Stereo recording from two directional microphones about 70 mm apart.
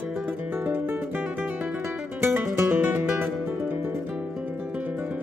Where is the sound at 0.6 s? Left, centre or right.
Right.